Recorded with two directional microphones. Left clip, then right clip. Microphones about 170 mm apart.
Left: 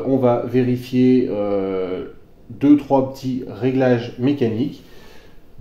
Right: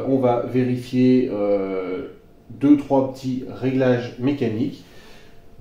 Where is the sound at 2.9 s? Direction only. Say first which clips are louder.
Left 2 dB; 45° left (ahead or behind).